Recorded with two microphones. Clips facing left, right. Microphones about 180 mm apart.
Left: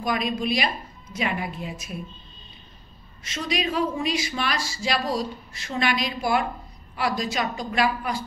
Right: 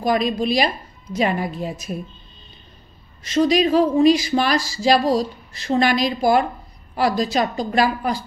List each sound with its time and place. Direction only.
0.0 s speech: 35° right (ahead or behind)
3.3 s speech: 40° right (ahead or behind)